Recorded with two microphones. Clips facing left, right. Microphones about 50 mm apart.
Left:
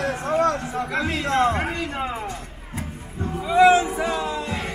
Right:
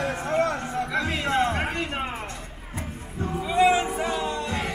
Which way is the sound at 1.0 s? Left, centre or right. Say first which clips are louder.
Left 5 dB; centre.